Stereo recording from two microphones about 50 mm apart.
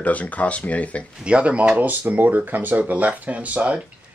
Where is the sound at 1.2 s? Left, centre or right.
Right.